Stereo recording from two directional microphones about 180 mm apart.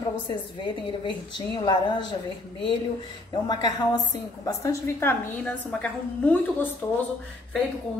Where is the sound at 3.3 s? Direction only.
25° left (ahead or behind); by 6.4 s 5° left (ahead or behind).